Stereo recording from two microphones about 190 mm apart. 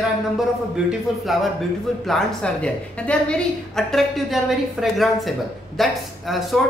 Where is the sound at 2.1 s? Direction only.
5° left (ahead or behind).